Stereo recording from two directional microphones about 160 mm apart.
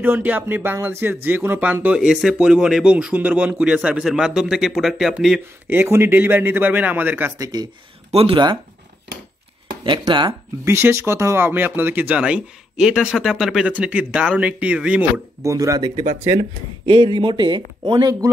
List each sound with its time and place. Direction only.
0.0 s speech: 10° right (ahead or behind)
8.1 s speech: 35° right (ahead or behind)
9.8 s speech: 30° right (ahead or behind)
10.6 s speech: 15° right (ahead or behind)
15.5 s speech: 20° right (ahead or behind)
16.3 s speech: 30° right (ahead or behind)